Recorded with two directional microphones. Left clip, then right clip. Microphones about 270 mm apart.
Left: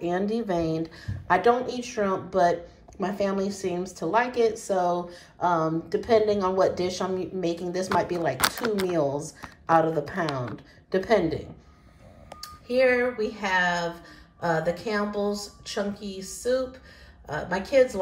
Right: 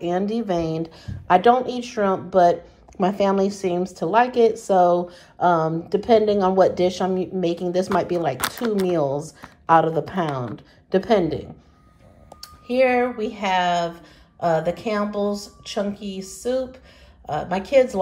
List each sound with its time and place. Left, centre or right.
0.0 s a woman's voice: centre